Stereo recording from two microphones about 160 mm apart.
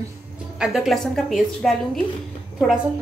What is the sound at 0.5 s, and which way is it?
A woman's voice, 5° right (ahead or behind).